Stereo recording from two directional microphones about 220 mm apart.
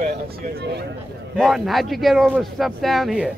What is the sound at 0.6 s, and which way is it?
Speech, 50° right (ahead or behind).